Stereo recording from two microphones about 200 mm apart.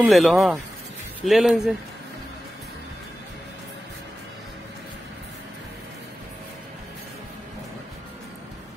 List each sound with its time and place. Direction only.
0.0 s speech: centre (ahead or behind)